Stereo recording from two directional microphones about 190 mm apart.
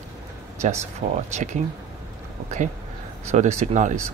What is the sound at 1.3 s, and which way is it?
Speech, 40° right (ahead or behind).